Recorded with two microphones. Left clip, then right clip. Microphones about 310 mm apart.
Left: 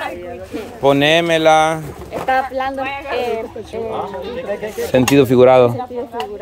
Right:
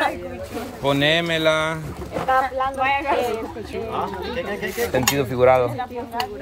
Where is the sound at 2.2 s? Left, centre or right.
Left.